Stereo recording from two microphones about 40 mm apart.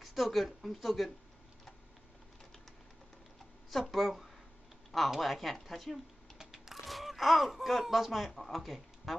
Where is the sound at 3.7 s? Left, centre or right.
Centre.